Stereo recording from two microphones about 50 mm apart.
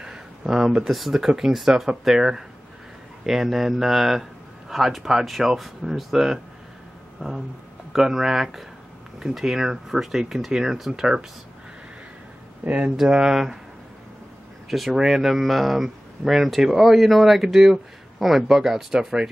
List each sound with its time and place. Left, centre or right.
0.0 s a sound: centre
0.8 s speech: centre
12.6 s speech: right
12.9 s speech: centre
14.7 s speech: centre